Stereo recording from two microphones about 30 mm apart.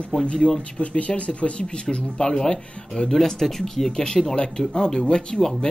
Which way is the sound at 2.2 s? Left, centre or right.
Left.